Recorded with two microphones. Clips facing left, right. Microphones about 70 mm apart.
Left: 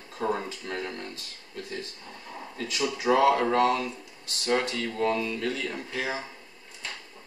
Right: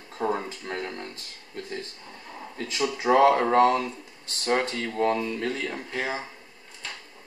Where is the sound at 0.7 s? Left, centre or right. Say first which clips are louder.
Right 1 dB; right.